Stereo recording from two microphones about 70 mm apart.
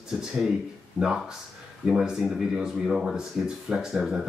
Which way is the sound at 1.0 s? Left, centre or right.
Centre.